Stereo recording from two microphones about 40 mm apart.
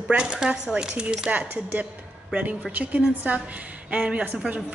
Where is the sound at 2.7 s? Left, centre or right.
Right.